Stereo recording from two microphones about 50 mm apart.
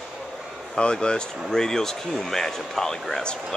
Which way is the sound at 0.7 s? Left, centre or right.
Centre.